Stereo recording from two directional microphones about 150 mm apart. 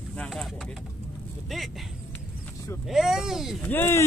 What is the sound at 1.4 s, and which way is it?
Speech, centre (ahead or behind).